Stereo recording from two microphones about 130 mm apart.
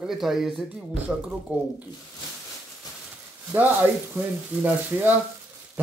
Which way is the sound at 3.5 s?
15° right (ahead or behind).